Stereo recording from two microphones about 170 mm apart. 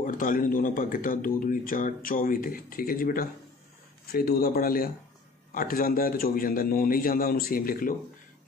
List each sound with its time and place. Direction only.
0.0 s speech: 50° left (ahead or behind)